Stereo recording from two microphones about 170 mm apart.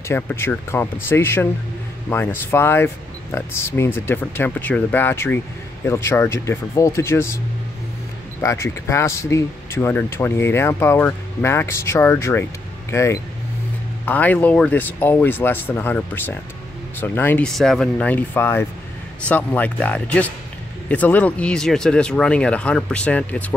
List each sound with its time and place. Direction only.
0.1 s speech: 10° left (ahead or behind)
8.4 s speech: 15° left (ahead or behind)